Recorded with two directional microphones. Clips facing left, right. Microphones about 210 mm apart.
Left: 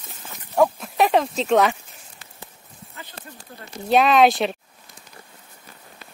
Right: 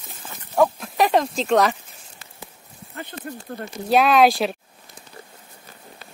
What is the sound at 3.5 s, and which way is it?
Speech, 60° right (ahead or behind).